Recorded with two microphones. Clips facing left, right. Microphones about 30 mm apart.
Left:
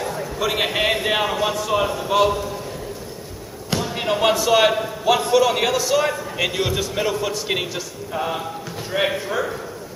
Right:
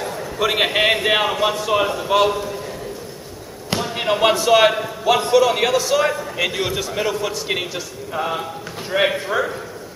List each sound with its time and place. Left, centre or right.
0.0 s a sound: centre
0.4 s a man's voice: centre
3.7 s a man's voice: centre